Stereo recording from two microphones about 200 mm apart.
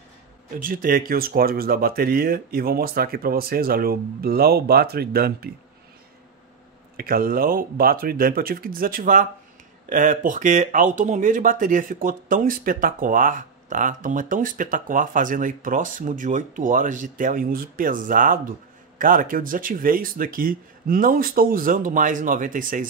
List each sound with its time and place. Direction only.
0.6 s speech: 45° right (ahead or behind)
7.0 s speech: 45° right (ahead or behind)